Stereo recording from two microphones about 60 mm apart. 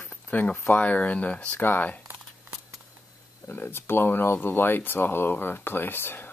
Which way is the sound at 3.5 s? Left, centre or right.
Left.